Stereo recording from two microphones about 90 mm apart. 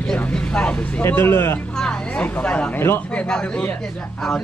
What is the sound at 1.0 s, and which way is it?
Speech, 25° left (ahead or behind).